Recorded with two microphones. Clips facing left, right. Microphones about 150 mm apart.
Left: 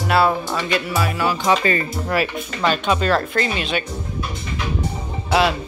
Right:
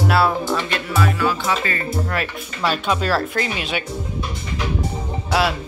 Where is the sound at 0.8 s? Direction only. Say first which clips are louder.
Right 1 dB; 15° left (ahead or behind).